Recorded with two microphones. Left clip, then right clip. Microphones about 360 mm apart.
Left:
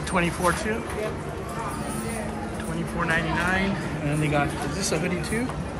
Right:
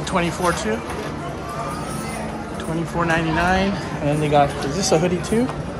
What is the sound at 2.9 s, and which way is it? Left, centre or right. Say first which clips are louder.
Speech: right 5 dB; centre.